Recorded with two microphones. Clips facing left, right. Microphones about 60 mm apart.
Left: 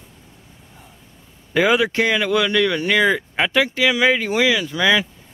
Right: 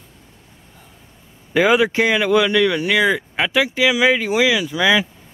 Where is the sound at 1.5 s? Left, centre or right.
Centre.